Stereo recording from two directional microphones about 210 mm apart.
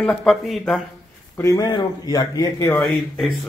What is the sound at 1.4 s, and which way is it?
Speech, 15° left (ahead or behind).